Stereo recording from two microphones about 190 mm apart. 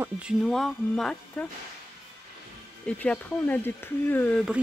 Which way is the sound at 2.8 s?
5° left (ahead or behind).